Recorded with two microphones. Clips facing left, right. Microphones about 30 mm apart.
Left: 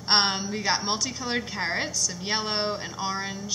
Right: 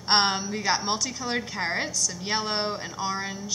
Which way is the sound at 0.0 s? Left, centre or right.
Centre.